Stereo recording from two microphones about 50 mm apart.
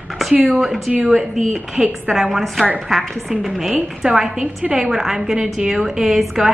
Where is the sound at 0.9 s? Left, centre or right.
Right.